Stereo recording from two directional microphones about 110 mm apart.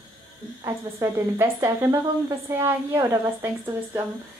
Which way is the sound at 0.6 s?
25° right (ahead or behind).